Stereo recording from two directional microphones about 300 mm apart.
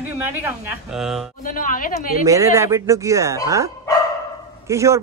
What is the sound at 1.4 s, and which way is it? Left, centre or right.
Speech, left.